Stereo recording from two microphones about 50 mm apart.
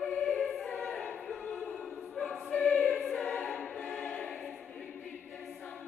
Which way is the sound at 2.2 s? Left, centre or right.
Left.